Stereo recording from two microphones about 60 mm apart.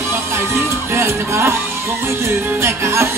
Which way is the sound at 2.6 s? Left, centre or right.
Right.